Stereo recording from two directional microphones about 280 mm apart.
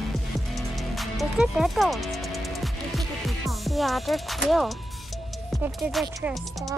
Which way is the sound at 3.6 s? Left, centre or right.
Centre.